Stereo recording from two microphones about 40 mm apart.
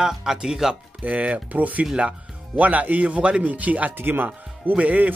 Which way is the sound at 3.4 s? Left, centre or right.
Right.